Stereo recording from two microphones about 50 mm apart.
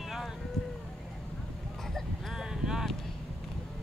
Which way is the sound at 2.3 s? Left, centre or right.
Centre.